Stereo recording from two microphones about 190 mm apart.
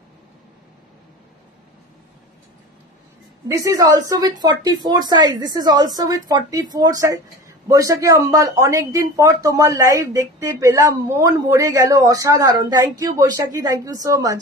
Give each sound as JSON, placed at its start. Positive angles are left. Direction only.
{"t": 3.4, "sound": "a woman's voice", "side_deg": -15}